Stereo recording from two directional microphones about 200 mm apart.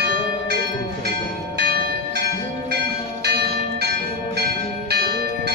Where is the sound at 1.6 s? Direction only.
50° right (ahead or behind).